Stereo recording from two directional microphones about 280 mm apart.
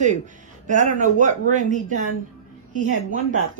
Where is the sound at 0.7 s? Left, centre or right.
Right.